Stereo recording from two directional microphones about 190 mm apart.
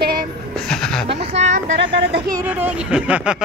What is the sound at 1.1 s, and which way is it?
Speech, 35° right (ahead or behind).